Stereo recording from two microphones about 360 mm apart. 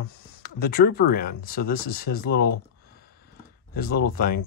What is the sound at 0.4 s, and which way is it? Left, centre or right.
Speech, left.